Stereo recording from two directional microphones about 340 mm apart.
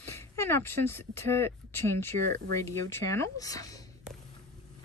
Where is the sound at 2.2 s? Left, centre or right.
Right.